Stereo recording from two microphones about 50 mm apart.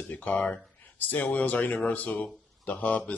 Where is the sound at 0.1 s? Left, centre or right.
Left.